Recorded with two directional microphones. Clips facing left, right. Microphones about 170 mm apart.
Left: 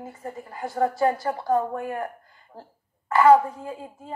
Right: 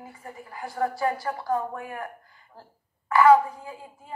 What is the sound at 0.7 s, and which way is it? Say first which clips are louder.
Speech: left 4 dB; 25° left (ahead or behind).